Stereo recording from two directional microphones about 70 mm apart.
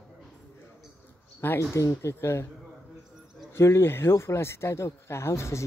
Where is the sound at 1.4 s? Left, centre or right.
Left.